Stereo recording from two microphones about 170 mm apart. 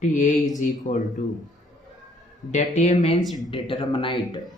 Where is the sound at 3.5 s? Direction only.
25° left (ahead or behind).